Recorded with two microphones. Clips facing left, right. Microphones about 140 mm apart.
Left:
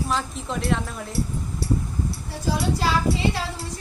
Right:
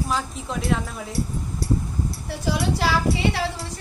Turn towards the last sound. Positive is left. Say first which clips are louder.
# even
turn(degrees=-80)